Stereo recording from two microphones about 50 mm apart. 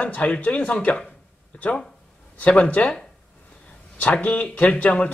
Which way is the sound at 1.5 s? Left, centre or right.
Left.